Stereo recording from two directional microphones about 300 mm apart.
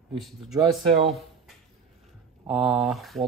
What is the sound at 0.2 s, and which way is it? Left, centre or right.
Speech, centre.